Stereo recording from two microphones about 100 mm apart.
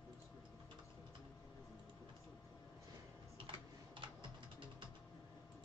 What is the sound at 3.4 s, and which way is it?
Typing, 55° right (ahead or behind).